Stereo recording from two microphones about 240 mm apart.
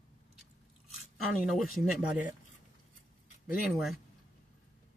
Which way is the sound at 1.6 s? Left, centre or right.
Centre.